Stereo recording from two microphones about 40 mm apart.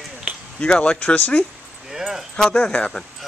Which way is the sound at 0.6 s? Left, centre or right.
Left.